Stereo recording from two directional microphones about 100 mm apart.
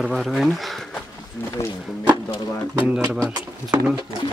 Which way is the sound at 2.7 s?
15° right (ahead or behind).